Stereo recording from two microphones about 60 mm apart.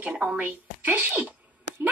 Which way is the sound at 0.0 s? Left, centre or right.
Right.